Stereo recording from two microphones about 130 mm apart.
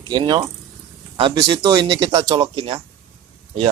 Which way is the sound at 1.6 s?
35° right (ahead or behind).